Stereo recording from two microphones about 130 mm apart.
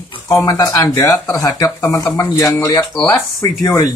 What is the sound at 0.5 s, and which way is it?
Speech, 25° left (ahead or behind).